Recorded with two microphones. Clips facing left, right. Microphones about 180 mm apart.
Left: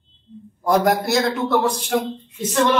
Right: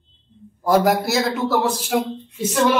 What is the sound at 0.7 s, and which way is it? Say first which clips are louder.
Speech: right 1 dB; centre (ahead or behind).